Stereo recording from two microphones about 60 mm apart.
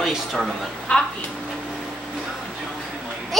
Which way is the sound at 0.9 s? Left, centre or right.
Centre.